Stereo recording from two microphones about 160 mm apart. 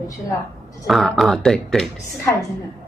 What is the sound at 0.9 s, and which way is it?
Speech, centre (ahead or behind).